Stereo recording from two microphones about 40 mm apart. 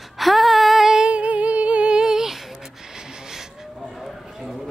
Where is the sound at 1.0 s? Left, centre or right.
Right.